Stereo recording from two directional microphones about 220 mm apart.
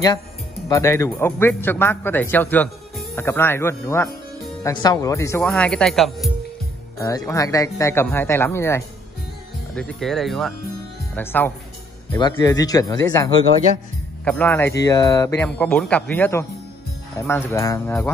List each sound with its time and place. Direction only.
0.7 s a man's voice: 15° left (ahead or behind)
7.0 s a man's voice: 15° left (ahead or behind)
12.1 s a man's voice: 20° left (ahead or behind)